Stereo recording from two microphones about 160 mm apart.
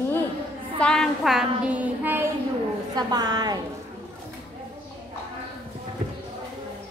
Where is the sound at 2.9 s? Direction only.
25° right (ahead or behind).